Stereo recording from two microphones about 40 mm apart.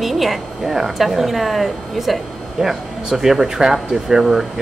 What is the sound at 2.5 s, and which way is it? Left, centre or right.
Speech, centre.